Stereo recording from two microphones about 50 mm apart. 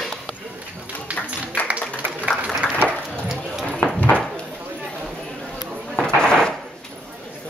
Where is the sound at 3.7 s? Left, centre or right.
Left.